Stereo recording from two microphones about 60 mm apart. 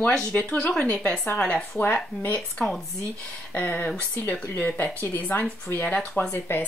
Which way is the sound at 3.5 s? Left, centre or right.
Left.